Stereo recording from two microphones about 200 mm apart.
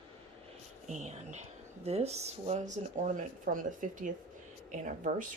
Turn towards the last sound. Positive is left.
turn(degrees=-40)  # may be behind; listen again after turning